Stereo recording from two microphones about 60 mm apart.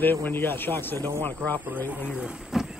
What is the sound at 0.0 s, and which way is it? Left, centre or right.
Speech, left.